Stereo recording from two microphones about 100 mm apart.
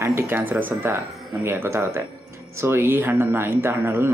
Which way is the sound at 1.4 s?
25° right (ahead or behind).